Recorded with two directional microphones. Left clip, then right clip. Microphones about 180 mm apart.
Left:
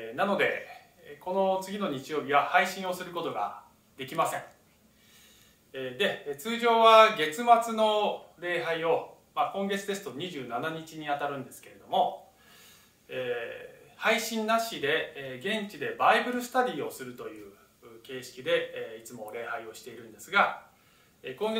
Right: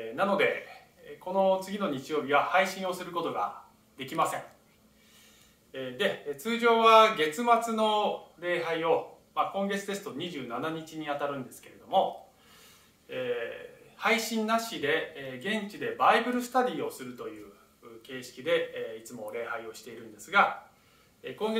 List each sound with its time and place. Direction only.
0.1 s speech: 5° right (ahead or behind)
5.7 s speech: 5° right (ahead or behind)
13.1 s a man's voice: 5° right (ahead or behind)